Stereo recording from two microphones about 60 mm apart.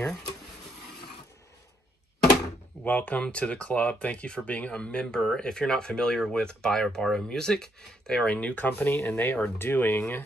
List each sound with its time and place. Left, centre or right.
2.8 s speech: left